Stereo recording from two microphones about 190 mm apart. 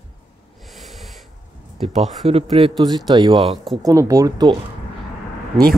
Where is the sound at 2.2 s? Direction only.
30° right (ahead or behind).